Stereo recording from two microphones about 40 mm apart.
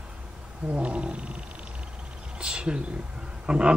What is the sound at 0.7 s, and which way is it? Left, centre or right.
Speech, right.